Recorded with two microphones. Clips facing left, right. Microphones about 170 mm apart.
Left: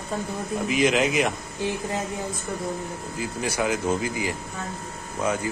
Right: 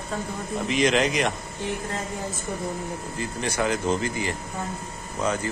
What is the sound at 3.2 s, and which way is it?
Speech, 10° left (ahead or behind).